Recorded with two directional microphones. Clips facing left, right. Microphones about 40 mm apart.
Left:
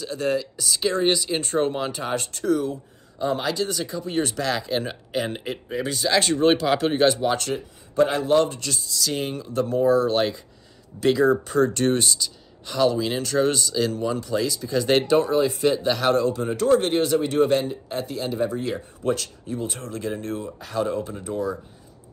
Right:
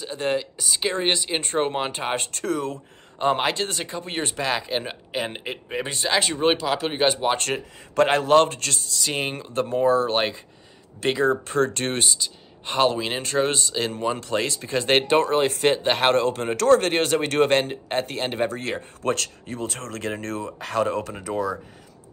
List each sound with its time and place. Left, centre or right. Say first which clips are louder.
0.2 s speech: even; right
2.3 s speech: left 3 dB; right
4.3 s speech: even; right
6.1 s speech: left 2 dB; centre
6.6 s speech: left 3 dB; centre
6.9 s speech: left 2 dB; centre
7.2 s speech: even; right
7.5 s speech: even; right
8.9 s speech: left 1 dB; right
12.0 s speech: even; right
12.6 s speech: even; right
15.2 s speech: even; right
20.5 s speech: right 3 dB; right